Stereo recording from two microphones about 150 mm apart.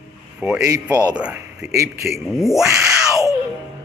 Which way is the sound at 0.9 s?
25° right (ahead or behind).